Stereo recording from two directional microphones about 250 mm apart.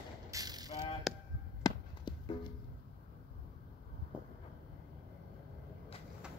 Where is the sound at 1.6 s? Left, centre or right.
Centre.